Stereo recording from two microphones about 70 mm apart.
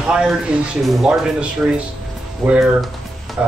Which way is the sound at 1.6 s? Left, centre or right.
Centre.